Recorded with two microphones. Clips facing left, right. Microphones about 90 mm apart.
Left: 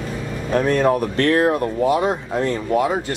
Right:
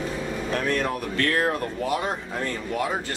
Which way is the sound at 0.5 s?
30° left (ahead or behind).